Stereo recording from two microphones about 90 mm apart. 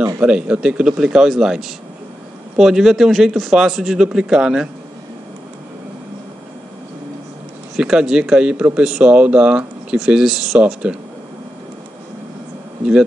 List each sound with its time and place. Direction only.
0.2 s a man's voice: 10° right (ahead or behind)
7.7 s speech: 10° right (ahead or behind)